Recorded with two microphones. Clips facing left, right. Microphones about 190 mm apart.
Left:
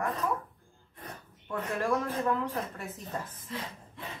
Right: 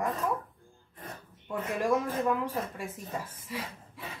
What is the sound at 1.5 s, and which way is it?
Speech, 15° right (ahead or behind).